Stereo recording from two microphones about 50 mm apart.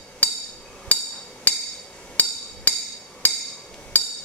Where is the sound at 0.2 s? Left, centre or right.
Left.